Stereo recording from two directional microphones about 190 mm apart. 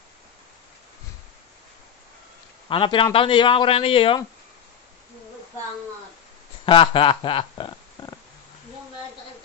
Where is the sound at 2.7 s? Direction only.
25° left (ahead or behind).